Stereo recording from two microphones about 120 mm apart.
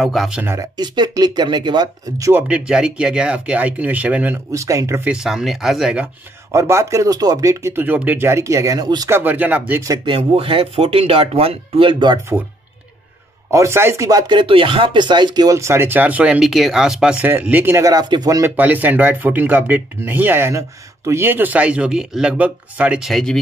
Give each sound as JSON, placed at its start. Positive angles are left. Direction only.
{"t": 0.0, "sound": "speech", "side_deg": 0}
{"t": 0.6, "sound": "speech", "side_deg": -35}
{"t": 2.4, "sound": "speech", "side_deg": -10}
{"t": 4.5, "sound": "speech", "side_deg": -25}
{"t": 5.0, "sound": "speech", "side_deg": -5}
{"t": 6.5, "sound": "speech", "side_deg": -25}
{"t": 9.1, "sound": "speech", "side_deg": -15}
{"t": 10.0, "sound": "speech", "side_deg": -50}
{"t": 13.5, "sound": "speech", "side_deg": -25}
{"t": 18.6, "sound": "speech", "side_deg": -15}